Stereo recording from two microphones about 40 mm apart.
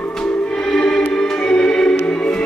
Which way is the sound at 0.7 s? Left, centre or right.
Centre.